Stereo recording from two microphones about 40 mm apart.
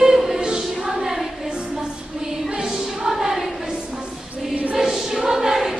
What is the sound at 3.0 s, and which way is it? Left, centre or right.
Choir, centre.